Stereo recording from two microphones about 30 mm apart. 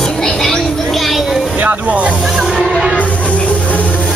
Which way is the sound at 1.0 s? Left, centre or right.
Centre.